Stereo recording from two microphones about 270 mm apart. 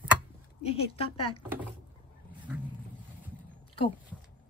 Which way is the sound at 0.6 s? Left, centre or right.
Left.